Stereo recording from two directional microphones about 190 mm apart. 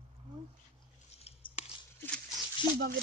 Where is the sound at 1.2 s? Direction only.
30° left (ahead or behind).